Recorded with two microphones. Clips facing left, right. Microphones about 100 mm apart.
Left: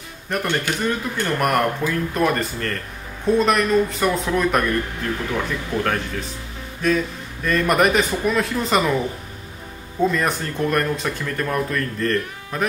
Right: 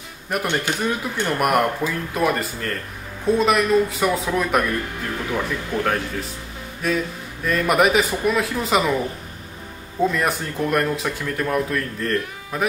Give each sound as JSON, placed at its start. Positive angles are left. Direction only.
{"t": 0.3, "sound": "speech", "side_deg": -10}